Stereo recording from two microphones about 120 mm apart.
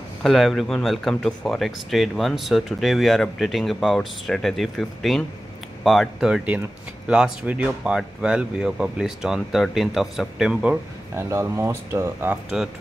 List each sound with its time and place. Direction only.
0.2 s speech: centre (ahead or behind)
11.1 s speech: 20° right (ahead or behind)